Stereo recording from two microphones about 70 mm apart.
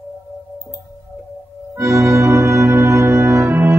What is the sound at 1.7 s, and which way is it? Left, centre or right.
Organ, right.